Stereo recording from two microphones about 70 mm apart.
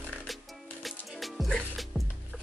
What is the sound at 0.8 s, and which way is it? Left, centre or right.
Music, centre.